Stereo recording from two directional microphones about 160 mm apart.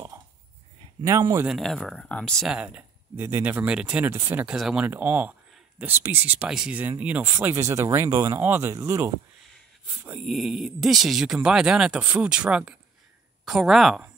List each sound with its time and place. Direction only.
1.0 s speech: 20° right (ahead or behind)
1.5 s speech: centre (ahead or behind); by 9.1 s 20° right (ahead or behind)
10.0 s speech: 5° right (ahead or behind)